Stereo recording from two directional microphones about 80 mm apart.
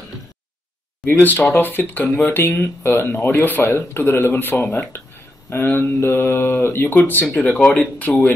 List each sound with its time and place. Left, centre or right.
1.0 s speech: left
7.6 s speech: centre